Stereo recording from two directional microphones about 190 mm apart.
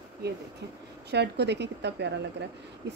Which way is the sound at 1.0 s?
65° right (ahead or behind).